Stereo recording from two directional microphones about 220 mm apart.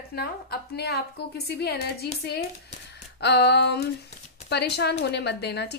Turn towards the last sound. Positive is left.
turn(degrees=50)  # may be behind; listen again after turning